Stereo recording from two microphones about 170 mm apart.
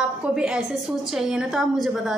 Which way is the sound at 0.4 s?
5° right (ahead or behind).